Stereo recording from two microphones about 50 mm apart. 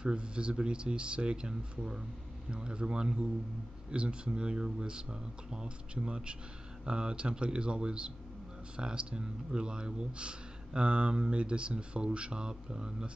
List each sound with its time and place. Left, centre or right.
0.0 s speech: centre